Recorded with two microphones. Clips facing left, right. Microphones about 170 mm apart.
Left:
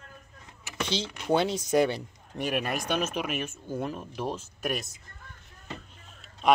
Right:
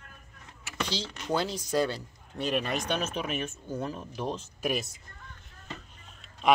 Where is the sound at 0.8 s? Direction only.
20° left (ahead or behind); by 4.8 s centre (ahead or behind).